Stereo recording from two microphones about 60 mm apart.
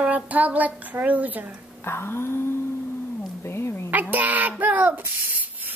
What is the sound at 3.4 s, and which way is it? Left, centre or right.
Speech, left.